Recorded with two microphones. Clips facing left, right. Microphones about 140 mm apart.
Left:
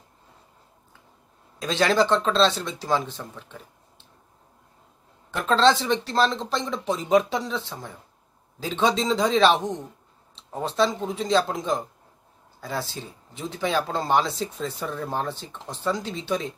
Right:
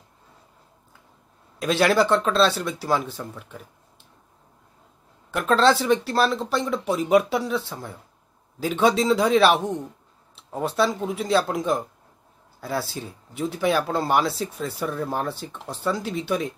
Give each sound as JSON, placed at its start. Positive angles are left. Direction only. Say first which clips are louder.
{"t": 1.6, "sound": "speech", "louder": "right 2 dB", "side_deg": -10}
{"t": 5.3, "sound": "speech", "louder": "right 1 dB", "side_deg": -10}